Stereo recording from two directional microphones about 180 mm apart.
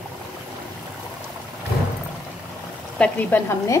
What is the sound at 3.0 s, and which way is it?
Speech, 10° left (ahead or behind).